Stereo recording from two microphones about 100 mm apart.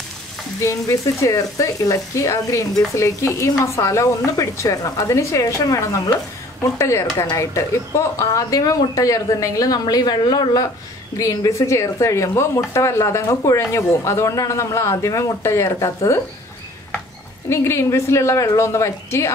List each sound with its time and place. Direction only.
0.6 s a woman's voice: 30° left (ahead or behind)
17.5 s speech: 25° left (ahead or behind)